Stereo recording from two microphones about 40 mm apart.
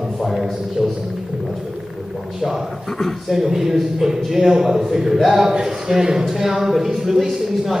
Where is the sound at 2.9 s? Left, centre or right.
Centre.